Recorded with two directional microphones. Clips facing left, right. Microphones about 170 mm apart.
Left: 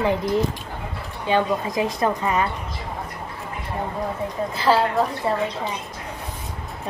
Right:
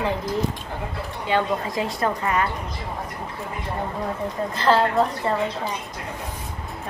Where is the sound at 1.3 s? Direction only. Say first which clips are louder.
Left 2 dB; 15° left (ahead or behind).